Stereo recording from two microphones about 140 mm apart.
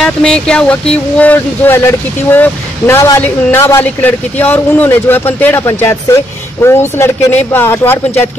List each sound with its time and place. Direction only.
0.0 s speech: 5° left (ahead or behind)